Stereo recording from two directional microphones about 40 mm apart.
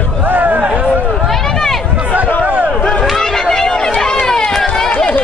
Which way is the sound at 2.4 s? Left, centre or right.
Right.